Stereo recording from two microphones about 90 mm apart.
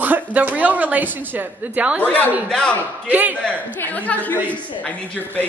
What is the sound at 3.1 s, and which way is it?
Speech, 20° right (ahead or behind).